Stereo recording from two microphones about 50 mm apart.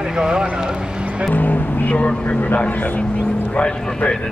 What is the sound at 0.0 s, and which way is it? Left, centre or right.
Speech, centre.